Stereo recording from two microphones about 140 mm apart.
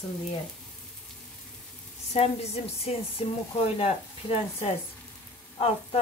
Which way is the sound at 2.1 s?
50° left (ahead or behind).